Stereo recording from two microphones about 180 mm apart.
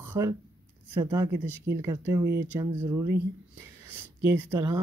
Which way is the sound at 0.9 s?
15° right (ahead or behind).